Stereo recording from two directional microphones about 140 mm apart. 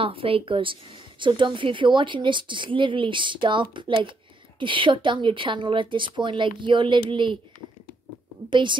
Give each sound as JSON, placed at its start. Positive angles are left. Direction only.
{"t": 0.0, "sound": "a woman's voice", "side_deg": -40}
{"t": 8.5, "sound": "a woman's voice", "side_deg": -35}